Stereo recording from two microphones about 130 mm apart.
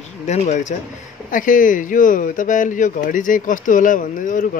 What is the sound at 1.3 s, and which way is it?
Speech, 90° left.